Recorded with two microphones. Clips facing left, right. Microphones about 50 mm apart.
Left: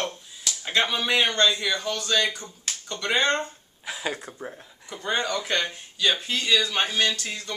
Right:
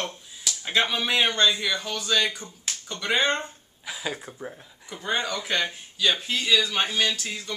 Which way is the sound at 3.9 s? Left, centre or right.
Centre.